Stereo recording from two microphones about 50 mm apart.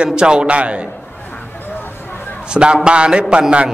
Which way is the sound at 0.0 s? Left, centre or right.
Centre.